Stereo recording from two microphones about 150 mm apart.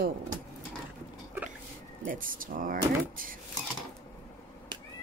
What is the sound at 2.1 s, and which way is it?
Speech, 65° right (ahead or behind).